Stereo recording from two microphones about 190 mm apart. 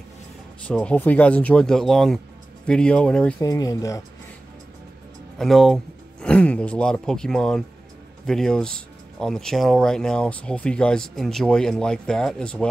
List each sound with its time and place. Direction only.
0.7 s speech: 10° left (ahead or behind)
3.3 s speech: 20° left (ahead or behind)
5.4 s speech: centre (ahead or behind)